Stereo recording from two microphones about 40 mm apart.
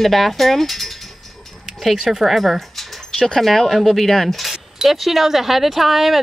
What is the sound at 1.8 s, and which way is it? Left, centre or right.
Speech, centre.